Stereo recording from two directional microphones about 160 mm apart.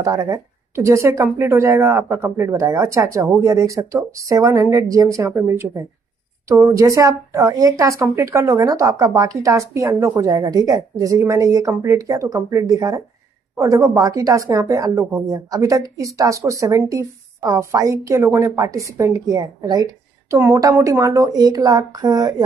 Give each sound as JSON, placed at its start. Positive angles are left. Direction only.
{"t": 0.0, "sound": "speech", "side_deg": -20}